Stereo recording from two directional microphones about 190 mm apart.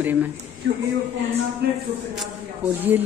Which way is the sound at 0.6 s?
80° right.